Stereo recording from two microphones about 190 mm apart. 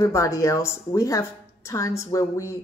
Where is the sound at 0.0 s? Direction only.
15° left (ahead or behind).